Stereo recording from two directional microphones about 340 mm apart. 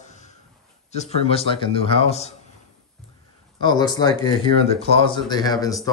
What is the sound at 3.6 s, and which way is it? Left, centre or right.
Speech, centre.